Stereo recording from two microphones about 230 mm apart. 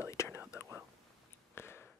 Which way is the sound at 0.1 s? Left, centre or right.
Centre.